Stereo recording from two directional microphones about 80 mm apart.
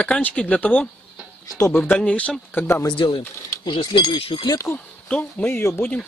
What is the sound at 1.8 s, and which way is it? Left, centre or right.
Speech, centre.